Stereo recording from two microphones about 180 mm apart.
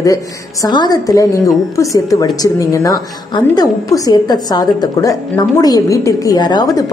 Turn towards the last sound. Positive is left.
turn(degrees=20)  # may be behind; listen again after turning